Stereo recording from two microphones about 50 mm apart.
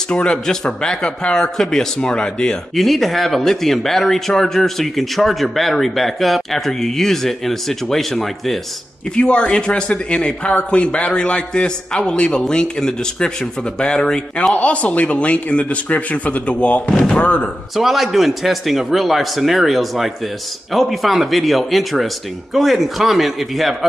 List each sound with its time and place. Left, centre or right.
0.1 s speech: left
2.7 s speech: centre
9.1 s speech: centre
14.5 s speech: left
16.9 s speech: centre
17.2 s speech: left
17.7 s speech: centre